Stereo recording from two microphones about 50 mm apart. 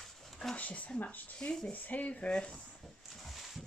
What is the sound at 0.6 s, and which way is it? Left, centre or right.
Speech, left.